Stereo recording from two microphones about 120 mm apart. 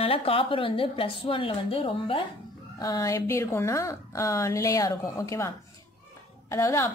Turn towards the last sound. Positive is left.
turn(degrees=20)  # may be behind; listen again after turning